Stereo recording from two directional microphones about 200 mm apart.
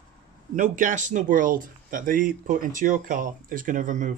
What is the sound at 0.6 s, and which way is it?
Speech, 40° right (ahead or behind).